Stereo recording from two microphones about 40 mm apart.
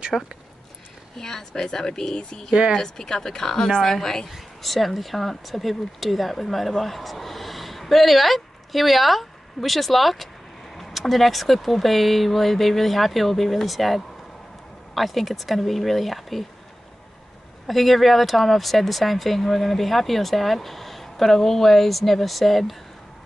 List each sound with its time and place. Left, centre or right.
0.1 s a woman's voice: left
4.3 s speech: centre
17.6 s speech: centre